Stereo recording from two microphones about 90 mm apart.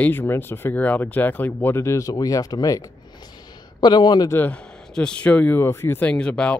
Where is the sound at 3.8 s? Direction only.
50° left (ahead or behind).